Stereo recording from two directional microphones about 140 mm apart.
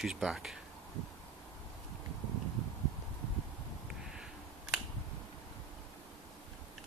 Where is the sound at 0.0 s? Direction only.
5° right (ahead or behind).